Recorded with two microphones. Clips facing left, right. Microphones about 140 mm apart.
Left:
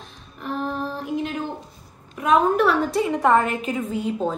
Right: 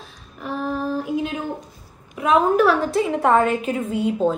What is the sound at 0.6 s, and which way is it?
Female singing, 5° right (ahead or behind).